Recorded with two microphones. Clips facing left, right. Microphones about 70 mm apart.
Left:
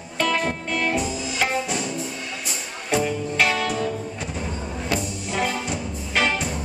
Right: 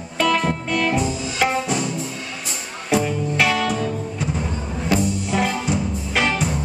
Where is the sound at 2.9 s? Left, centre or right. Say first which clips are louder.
Right 3 dB; centre.